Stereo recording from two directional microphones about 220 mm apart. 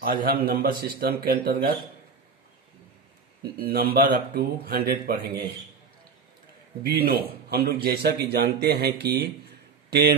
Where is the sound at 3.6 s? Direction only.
40° right (ahead or behind).